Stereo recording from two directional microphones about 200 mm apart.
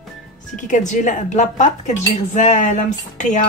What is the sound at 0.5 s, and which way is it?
Speech, 40° left (ahead or behind).